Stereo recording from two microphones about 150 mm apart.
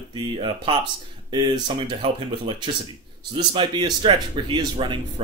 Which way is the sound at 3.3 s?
30° right (ahead or behind).